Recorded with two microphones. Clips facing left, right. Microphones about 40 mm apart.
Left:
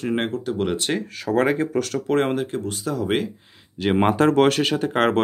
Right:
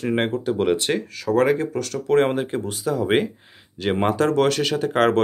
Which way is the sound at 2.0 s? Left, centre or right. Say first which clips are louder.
Right 5 dB; centre.